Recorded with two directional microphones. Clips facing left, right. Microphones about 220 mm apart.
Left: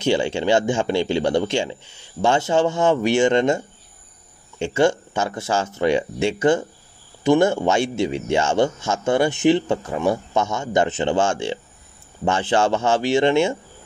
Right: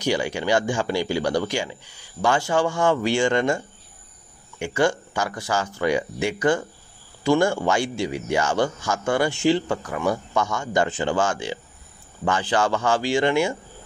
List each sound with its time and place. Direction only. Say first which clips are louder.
0.0 s a man's voice: left 4 dB; 25° left (ahead or behind)